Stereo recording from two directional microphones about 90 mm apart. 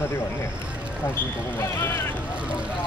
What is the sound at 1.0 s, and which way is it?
Speech, 25° left (ahead or behind).